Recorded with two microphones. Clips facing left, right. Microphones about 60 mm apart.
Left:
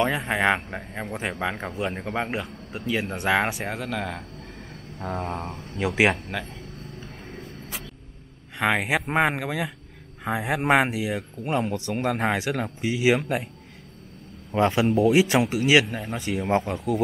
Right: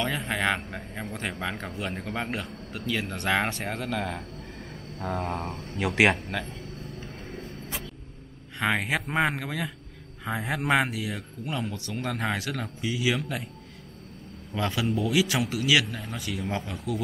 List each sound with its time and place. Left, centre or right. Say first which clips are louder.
0.0 s a man's voice: left 5 dB; centre
8.5 s a man's voice: left 3 dB; centre
11.4 s speech: left 7 dB; left
14.5 s speech: left 7 dB; left